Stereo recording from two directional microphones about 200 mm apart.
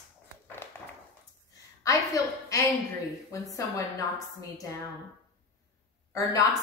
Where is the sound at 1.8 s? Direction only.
15° left (ahead or behind).